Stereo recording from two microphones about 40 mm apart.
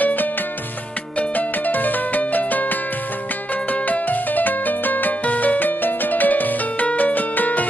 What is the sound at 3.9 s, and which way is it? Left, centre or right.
Music, left.